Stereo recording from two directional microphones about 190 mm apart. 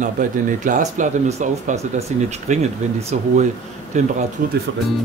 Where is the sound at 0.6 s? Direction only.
40° right (ahead or behind).